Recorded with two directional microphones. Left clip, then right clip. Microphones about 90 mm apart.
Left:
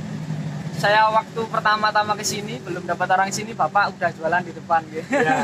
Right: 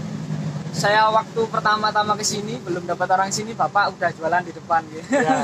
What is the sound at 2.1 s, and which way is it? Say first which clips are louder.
Speech: right 2 dB; 30° left (ahead or behind).